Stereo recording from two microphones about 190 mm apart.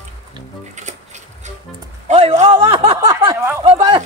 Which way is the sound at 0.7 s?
40° right (ahead or behind).